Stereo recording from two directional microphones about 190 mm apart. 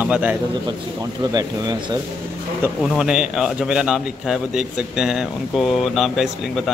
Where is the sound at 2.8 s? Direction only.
5° right (ahead or behind).